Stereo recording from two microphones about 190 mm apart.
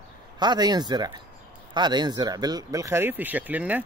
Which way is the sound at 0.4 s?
20° right (ahead or behind).